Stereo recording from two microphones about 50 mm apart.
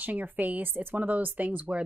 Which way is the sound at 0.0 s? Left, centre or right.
Right.